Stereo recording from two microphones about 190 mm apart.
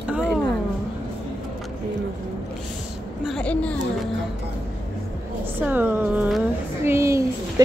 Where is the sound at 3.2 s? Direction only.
5° left (ahead or behind).